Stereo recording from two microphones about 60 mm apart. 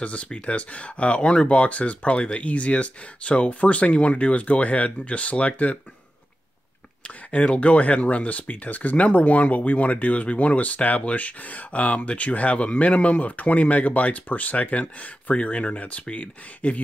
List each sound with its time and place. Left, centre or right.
0.0 s speech: left
7.2 s speech: left